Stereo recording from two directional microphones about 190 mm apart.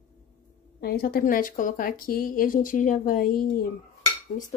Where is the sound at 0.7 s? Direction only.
55° left (ahead or behind).